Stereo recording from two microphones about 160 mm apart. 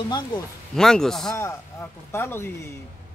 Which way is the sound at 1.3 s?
15° left (ahead or behind).